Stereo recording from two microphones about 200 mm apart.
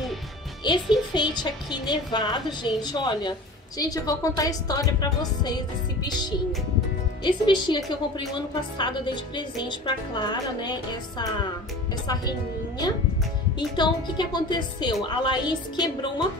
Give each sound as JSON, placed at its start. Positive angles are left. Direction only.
{"t": 0.7, "sound": "a woman's voice", "side_deg": 20}
{"t": 7.2, "sound": "a woman's voice", "side_deg": 20}
{"t": 13.6, "sound": "a woman's voice", "side_deg": 20}